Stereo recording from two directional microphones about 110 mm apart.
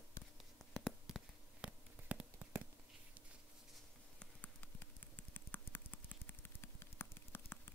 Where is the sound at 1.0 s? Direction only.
5° right (ahead or behind).